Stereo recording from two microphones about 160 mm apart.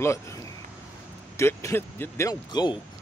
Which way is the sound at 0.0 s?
20° left (ahead or behind).